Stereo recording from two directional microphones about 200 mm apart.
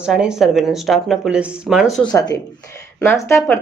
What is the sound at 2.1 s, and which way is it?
Speech, 20° left (ahead or behind).